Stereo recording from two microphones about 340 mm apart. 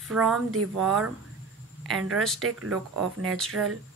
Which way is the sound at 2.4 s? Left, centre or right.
Right.